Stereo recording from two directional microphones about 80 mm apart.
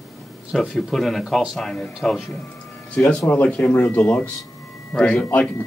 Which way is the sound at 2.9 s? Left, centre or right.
Centre.